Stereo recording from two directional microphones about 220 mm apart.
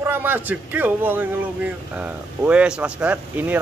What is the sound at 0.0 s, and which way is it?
Speech, 10° right (ahead or behind).